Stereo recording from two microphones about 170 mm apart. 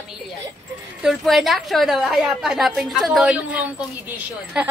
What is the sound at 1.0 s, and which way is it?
A woman's voice, centre (ahead or behind).